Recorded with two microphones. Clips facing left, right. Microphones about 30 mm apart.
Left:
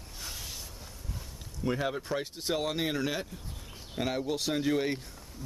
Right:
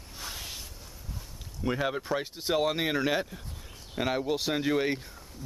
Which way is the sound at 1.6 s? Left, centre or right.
Centre.